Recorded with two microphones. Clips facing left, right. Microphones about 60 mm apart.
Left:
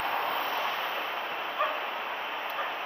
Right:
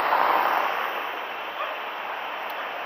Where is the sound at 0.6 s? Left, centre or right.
Right.